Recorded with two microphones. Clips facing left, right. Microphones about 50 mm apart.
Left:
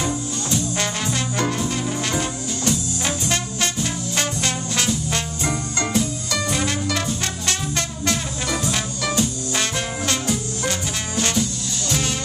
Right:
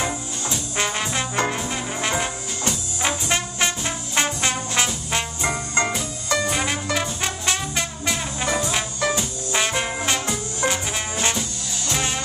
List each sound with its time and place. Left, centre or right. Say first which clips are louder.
0.7 s brass instrument: even; right